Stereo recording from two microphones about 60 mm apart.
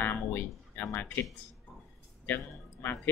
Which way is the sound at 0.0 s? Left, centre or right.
Left.